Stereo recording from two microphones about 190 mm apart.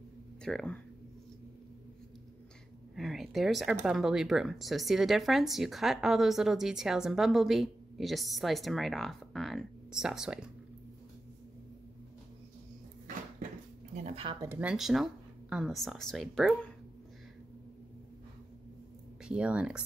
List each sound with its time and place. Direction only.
0.4 s speech: 5° left (ahead or behind)
3.0 s speech: centre (ahead or behind)
14.0 s a sound: 30° right (ahead or behind)
14.4 s speech: 10° right (ahead or behind)
19.2 s speech: 5° right (ahead or behind)